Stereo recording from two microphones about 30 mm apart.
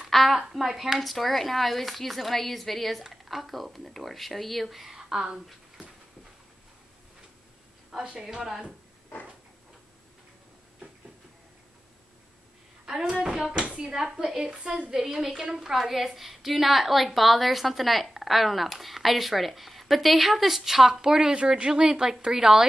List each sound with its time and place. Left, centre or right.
0.1 s a woman's voice: centre
4.9 s speech: right
8.0 s speech: right
13.0 s speech: right
14.9 s a woman's voice: centre
21.0 s a woman's voice: centre